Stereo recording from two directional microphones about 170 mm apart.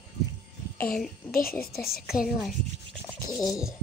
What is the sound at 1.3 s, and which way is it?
Speech, 60° left (ahead or behind).